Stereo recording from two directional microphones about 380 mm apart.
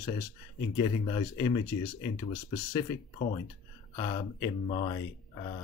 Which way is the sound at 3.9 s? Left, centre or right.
Centre.